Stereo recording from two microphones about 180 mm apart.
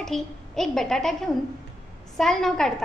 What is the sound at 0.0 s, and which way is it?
A woman's voice, centre (ahead or behind).